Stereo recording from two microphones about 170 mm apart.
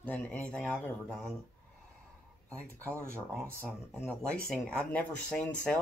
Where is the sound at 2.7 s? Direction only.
15° right (ahead or behind).